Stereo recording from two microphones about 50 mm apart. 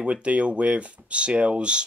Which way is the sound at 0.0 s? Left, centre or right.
Right.